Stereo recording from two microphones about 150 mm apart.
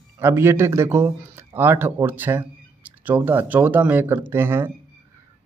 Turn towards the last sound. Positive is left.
turn(degrees=-15)  # may be behind; listen again after turning